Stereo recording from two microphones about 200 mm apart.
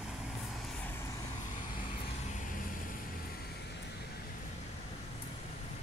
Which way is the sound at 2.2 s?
40° left (ahead or behind).